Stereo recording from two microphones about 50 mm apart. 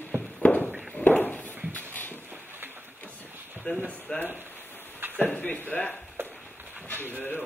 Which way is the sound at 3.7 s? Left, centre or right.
Left.